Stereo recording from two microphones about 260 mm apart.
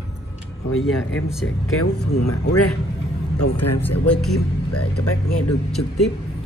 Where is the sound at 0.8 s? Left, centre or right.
Centre.